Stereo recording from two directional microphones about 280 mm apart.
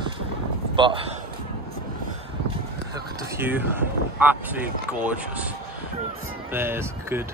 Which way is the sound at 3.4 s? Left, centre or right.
Centre.